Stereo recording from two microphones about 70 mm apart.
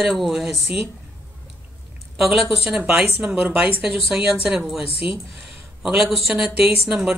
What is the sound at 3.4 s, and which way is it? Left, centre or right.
Speech, centre.